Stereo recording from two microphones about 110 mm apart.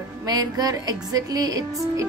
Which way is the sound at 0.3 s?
35° right (ahead or behind).